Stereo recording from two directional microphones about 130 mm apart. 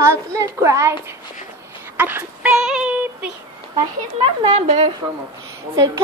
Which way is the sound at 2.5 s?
5° right (ahead or behind).